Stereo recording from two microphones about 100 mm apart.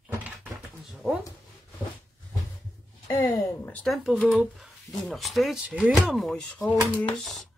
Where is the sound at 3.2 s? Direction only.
40° left (ahead or behind).